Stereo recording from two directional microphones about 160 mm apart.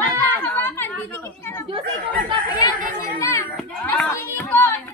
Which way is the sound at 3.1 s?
20° left (ahead or behind).